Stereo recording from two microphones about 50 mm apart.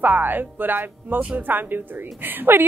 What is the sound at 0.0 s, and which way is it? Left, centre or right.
A woman's voice, right.